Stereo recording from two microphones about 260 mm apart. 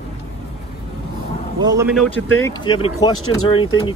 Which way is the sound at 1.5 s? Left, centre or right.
Centre.